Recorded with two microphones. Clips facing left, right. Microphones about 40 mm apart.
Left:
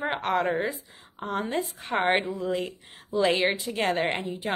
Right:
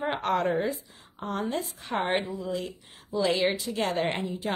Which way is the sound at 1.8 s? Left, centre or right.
Left.